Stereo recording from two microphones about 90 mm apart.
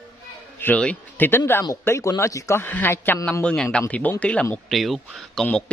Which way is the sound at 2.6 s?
25° left (ahead or behind).